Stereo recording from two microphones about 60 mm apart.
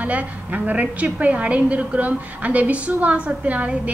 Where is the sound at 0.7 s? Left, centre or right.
Right.